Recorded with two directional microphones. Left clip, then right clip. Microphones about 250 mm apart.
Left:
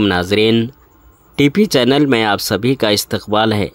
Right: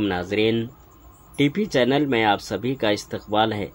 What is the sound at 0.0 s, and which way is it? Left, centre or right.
Speech, left.